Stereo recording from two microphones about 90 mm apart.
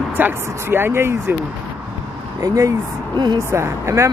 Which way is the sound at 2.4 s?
35° right (ahead or behind).